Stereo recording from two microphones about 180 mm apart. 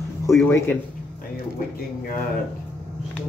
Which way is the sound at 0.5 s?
15° left (ahead or behind).